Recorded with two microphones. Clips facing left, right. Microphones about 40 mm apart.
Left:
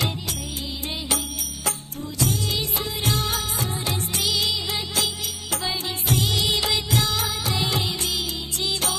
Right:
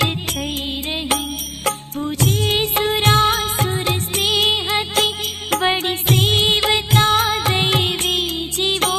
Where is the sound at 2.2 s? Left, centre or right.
Right.